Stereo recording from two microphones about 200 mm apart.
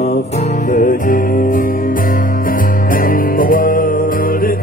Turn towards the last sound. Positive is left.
turn(degrees=45)  # may be behind; listen again after turning